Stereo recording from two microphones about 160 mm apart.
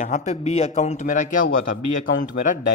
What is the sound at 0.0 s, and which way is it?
A man's voice, 45° left (ahead or behind).